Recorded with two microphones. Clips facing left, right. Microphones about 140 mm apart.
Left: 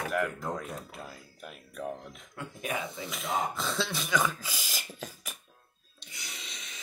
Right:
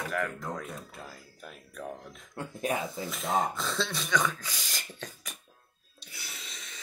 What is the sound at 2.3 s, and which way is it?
Speech, 30° right (ahead or behind).